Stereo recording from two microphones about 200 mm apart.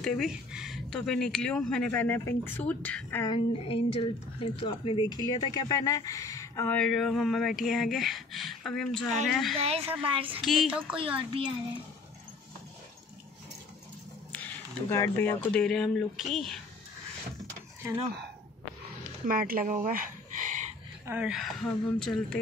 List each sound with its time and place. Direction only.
0.0 s speech: centre (ahead or behind)
3.3 s speech: 30° left (ahead or behind); by 9.6 s centre (ahead or behind)
9.6 s a woman's voice: 30° right (ahead or behind)
10.3 s speech: centre (ahead or behind)
11.0 s a woman's voice: 25° right (ahead or behind)
14.3 s speech: 10° left (ahead or behind)
17.8 s speech: 15° right (ahead or behind)
19.2 s speech: 45° right (ahead or behind)
21.0 s speech: 10° right (ahead or behind)